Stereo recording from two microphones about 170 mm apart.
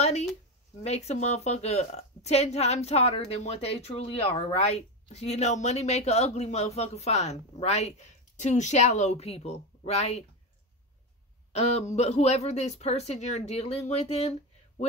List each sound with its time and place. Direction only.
0.0 s a sound: 40° left (ahead or behind)
0.8 s a woman's voice: 40° left (ahead or behind)
11.5 s a woman's voice: 40° left (ahead or behind)